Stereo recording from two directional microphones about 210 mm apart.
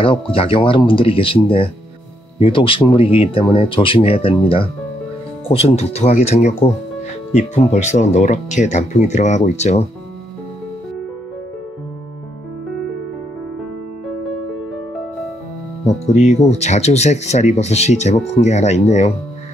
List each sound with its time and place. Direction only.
0.0 s speech: 25° left (ahead or behind)
16.1 s speech: 35° left (ahead or behind)